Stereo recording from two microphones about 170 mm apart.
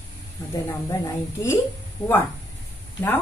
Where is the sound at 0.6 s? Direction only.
15° left (ahead or behind).